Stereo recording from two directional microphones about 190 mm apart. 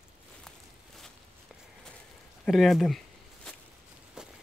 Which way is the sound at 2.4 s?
Centre (ahead or behind).